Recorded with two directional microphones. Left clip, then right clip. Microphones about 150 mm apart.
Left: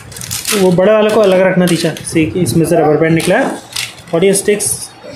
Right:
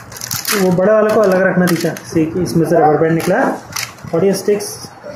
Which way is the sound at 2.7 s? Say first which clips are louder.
Even; 35° left (ahead or behind).